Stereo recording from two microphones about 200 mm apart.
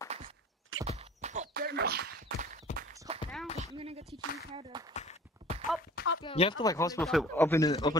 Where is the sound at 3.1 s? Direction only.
30° right (ahead or behind).